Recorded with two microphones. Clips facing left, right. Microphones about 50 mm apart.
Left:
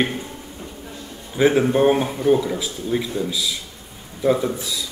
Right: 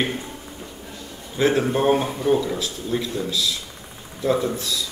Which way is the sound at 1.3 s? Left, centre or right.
Centre.